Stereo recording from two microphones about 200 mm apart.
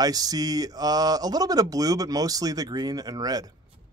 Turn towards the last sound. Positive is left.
turn(degrees=-20)  # may be behind; listen again after turning